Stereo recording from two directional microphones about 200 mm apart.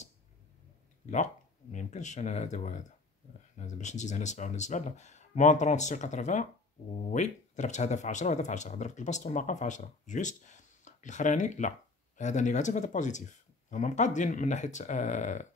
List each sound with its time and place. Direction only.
1.1 s speech: 40° left (ahead or behind)